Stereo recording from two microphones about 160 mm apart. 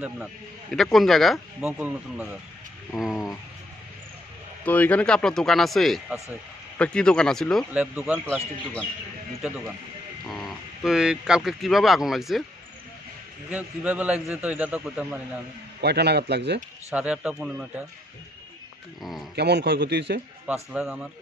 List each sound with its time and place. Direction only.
0.0 s speech: centre (ahead or behind)
4.6 s speech: 10° left (ahead or behind)
7.7 s a man's voice: 10° right (ahead or behind)
10.2 s speech: centre (ahead or behind)
13.5 s a man's voice: 10° right (ahead or behind)
15.8 s a man's voice: 90° right
16.9 s a man's voice: 10° right (ahead or behind)
19.3 s a man's voice: 90° right
20.4 s a man's voice: 5° right (ahead or behind)